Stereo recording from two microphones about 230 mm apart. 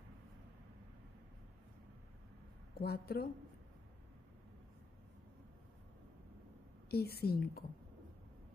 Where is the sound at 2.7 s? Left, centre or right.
Left.